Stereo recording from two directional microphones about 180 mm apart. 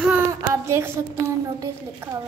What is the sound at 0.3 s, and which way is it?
A woman's voice, 15° right (ahead or behind).